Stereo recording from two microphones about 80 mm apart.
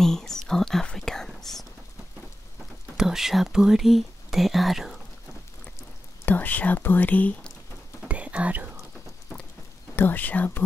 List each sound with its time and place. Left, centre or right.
0.0 s whispering: centre
3.0 s speech: centre
6.2 s whispering: left
8.1 s whispering: centre
9.9 s speech: left